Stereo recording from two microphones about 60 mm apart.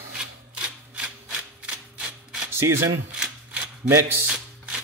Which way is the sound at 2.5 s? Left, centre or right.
Right.